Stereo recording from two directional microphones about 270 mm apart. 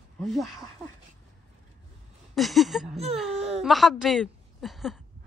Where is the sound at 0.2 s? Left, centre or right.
Centre.